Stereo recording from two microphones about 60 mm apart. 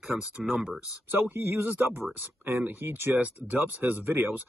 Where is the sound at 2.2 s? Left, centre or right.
Right.